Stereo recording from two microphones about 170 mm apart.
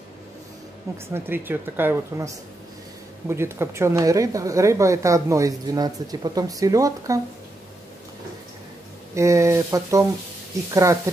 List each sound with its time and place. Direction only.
1.1 s speech: 15° right (ahead or behind)
9.1 s speech: 15° right (ahead or behind)